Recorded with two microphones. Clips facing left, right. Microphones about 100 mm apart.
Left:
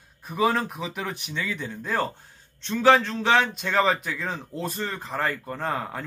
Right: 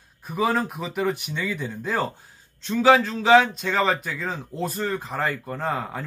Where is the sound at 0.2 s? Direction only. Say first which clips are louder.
Even; centre (ahead or behind).